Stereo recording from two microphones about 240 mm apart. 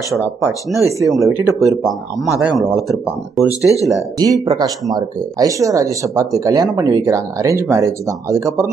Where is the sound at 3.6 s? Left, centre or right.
Centre.